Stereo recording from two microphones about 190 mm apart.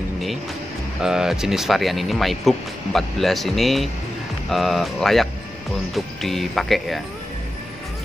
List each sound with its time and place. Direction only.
1.0 s speech: 5° right (ahead or behind)